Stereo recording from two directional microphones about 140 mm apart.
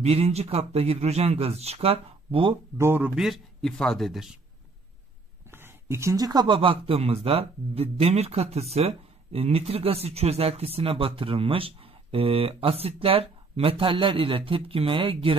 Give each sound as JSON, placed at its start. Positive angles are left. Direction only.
{"t": 0.0, "sound": "speech", "side_deg": -45}
{"t": 2.8, "sound": "a man's voice", "side_deg": -15}
{"t": 3.2, "sound": "a man's voice", "side_deg": 0}
{"t": 5.5, "sound": "speech", "side_deg": -15}